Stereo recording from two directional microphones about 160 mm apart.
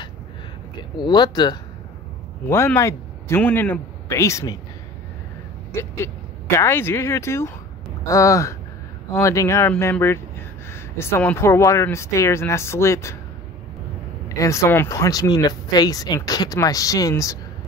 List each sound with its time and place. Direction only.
0.7 s speech: 25° left (ahead or behind)
2.4 s speech: 15° left (ahead or behind)
5.7 s speech: 15° left (ahead or behind)
14.4 s speech: 20° left (ahead or behind)